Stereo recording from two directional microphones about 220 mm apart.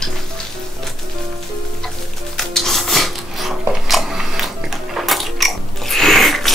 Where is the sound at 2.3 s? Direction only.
Centre (ahead or behind).